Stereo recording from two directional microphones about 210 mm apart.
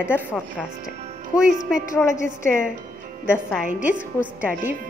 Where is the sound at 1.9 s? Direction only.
15° left (ahead or behind).